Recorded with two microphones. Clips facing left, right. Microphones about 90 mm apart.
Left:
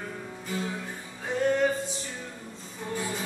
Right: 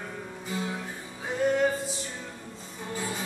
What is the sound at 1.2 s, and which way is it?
Music, 5° right (ahead or behind).